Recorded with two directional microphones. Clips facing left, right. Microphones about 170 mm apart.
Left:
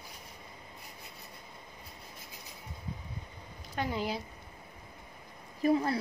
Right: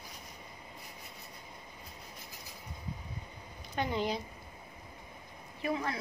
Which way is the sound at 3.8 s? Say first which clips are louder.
Right 1 dB; 5° left (ahead or behind).